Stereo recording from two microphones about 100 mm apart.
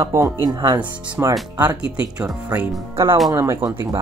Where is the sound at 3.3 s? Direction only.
35° right (ahead or behind).